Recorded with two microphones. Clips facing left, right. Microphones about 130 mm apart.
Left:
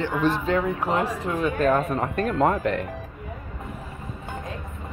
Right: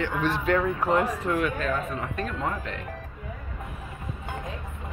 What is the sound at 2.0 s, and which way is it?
Speech, 50° left (ahead or behind).